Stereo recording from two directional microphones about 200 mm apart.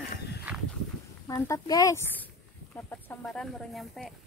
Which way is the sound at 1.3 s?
15° left (ahead or behind).